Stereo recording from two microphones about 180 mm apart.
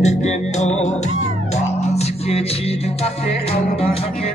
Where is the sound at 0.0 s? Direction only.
40° left (ahead or behind).